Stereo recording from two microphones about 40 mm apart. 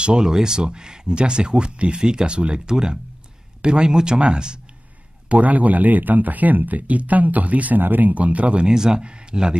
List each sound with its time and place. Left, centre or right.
0.0 s speech: centre
5.3 s speech: right
7.8 s speech: right
8.6 s speech: centre